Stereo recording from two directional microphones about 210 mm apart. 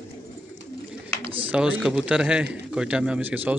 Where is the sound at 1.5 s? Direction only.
5° right (ahead or behind).